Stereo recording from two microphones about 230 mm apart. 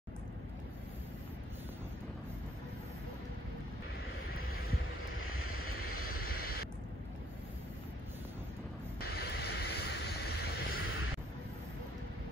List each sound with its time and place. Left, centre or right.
4.3 s vehicle: left
6.2 s a sound: left
9.0 s vehicle: left